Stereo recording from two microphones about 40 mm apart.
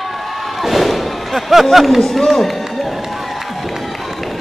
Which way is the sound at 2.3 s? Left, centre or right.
Centre.